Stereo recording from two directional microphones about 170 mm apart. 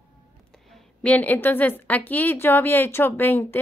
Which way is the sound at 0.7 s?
5° left (ahead or behind).